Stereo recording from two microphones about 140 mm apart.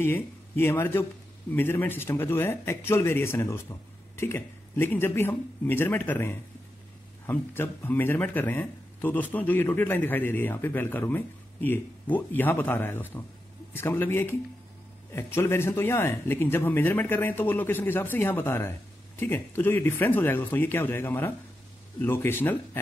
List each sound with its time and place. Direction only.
0.0 s speech: 15° left (ahead or behind)